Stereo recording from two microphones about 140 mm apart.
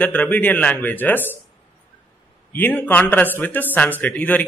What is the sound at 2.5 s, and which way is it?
Speech, 15° left (ahead or behind).